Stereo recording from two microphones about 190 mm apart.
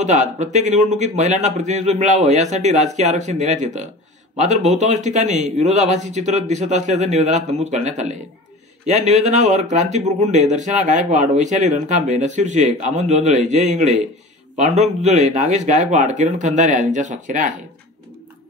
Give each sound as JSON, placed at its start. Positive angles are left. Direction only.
{"t": 0.0, "sound": "speech", "side_deg": -40}